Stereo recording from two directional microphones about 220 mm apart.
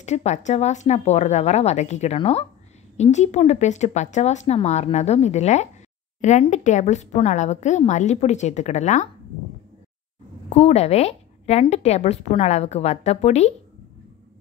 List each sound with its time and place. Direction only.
0.0 s a woman's voice: 30° left (ahead or behind)
10.5 s a woman's voice: 30° left (ahead or behind)